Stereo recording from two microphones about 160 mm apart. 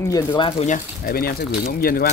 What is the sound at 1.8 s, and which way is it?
Speech, 70° left (ahead or behind).